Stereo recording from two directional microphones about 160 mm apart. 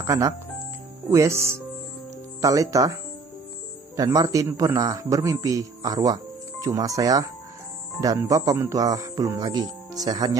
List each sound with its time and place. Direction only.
0.0 s a man's voice: 20° right (ahead or behind)